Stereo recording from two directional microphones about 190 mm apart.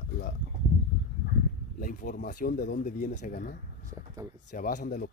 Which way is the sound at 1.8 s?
45° left (ahead or behind).